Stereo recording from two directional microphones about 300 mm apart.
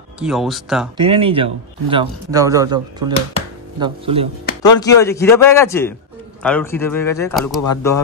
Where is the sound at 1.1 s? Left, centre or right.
Centre.